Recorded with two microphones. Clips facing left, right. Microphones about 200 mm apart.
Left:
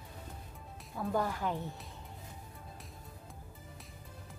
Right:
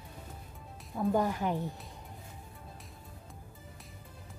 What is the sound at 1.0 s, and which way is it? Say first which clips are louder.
Speech: right 4 dB; 15° right (ahead or behind).